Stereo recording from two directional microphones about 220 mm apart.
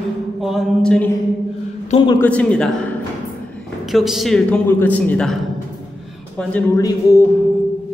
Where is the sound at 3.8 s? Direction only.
Centre (ahead or behind); by 7.2 s 15° left (ahead or behind).